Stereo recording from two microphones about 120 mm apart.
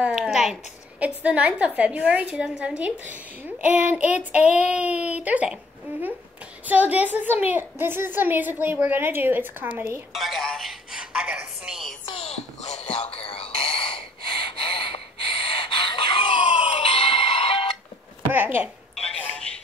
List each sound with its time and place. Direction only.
0.0 s a woman's voice: centre (ahead or behind); by 9.9 s 15° right (ahead or behind)
10.1 s a woman's voice: centre (ahead or behind)
12.1 s a sound: 55° left (ahead or behind)
13.1 s a sound: 55° left (ahead or behind)
18.3 s speech: 15° right (ahead or behind)
19.0 s telephone: 10° left (ahead or behind)